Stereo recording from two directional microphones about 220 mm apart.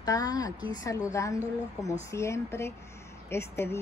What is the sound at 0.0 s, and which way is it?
Speech, 15° left (ahead or behind).